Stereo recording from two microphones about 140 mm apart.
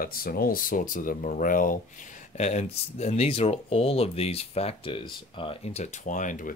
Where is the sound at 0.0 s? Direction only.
90° left.